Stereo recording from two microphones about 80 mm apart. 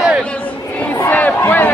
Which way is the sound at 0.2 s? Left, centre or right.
Centre.